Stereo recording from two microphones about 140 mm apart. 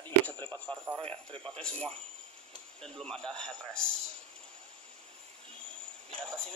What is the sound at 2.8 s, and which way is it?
A man's voice, 5° left (ahead or behind).